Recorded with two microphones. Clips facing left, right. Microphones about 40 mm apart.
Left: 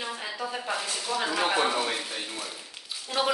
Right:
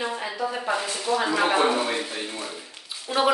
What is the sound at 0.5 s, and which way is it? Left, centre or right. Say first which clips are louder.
A woman's voice: right 4 dB; centre.